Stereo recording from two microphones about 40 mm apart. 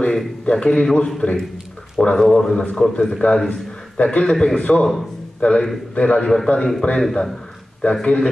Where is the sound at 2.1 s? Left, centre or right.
Centre.